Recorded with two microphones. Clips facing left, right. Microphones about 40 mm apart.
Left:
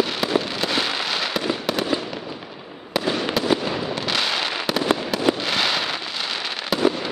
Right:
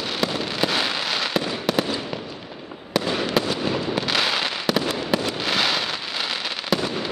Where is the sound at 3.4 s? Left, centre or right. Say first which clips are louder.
Left 1 dB; centre.